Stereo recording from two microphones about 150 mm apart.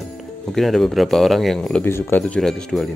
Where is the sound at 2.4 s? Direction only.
5° left (ahead or behind).